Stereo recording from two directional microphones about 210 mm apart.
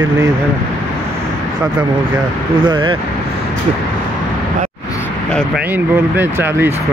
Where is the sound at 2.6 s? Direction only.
20° right (ahead or behind).